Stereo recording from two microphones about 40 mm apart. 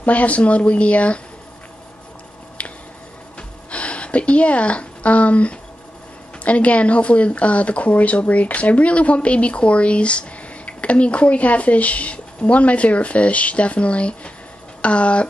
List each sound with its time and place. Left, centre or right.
0.0 s speech: left
3.3 s music: left
6.4 s speech: left